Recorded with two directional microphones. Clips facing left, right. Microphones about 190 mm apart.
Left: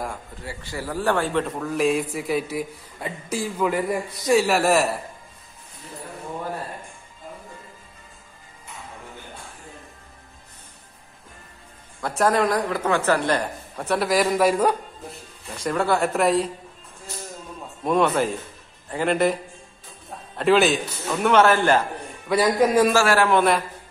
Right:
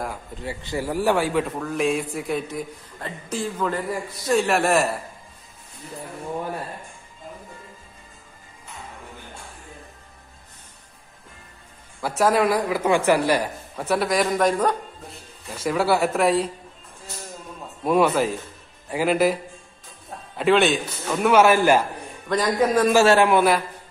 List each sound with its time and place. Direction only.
0.4 s a man's voice: 20° right (ahead or behind); by 5.0 s centre (ahead or behind)
12.0 s a man's voice: 5° right (ahead or behind)
15.4 s a man's voice: 5° right (ahead or behind)
17.8 s a man's voice: 5° right (ahead or behind)
20.3 s a man's voice: centre (ahead or behind)
22.3 s a man's voice: 10° left (ahead or behind)
22.9 s a man's voice: 20° right (ahead or behind)
23.3 s a man's voice: 5° right (ahead or behind)